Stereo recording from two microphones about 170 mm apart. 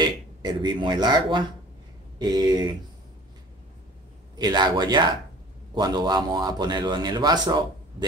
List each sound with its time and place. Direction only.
0.0 s speech: 25° right (ahead or behind)
4.4 s speech: 25° right (ahead or behind)